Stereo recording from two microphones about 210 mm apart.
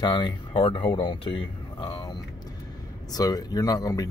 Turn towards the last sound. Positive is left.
turn(degrees=15)  # may be behind; listen again after turning